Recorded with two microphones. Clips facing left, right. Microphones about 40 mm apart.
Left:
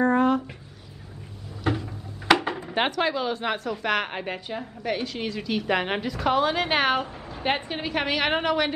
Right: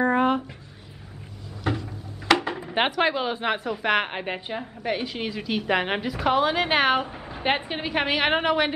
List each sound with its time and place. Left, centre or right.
0.0 s a sound: right
2.2 s dishes: centre
2.7 s a woman's voice: centre